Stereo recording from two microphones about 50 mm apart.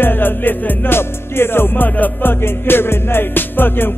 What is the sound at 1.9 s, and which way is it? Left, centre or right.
Music, left.